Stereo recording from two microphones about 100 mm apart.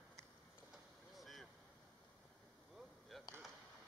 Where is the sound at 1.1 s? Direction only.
Centre (ahead or behind).